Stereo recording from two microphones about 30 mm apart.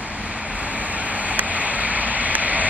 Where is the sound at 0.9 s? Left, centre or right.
Right.